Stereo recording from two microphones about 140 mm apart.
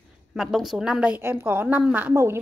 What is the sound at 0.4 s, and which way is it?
A woman's voice, centre (ahead or behind).